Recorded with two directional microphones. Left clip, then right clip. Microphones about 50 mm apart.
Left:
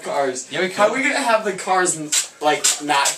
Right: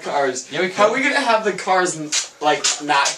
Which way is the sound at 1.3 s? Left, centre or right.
Right.